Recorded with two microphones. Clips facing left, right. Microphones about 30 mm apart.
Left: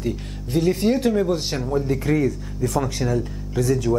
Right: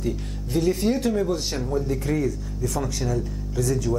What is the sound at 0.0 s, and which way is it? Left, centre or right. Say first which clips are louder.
Speech: left 1 dB; centre.